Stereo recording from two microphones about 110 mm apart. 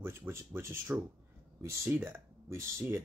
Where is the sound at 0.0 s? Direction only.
20° right (ahead or behind).